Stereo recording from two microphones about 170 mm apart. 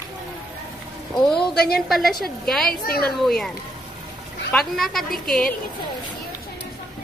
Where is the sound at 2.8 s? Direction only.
60° left (ahead or behind).